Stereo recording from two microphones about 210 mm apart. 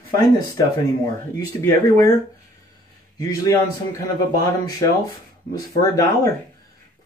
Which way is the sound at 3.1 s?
15° left (ahead or behind).